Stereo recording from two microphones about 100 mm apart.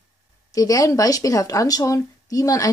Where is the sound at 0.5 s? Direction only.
35° left (ahead or behind).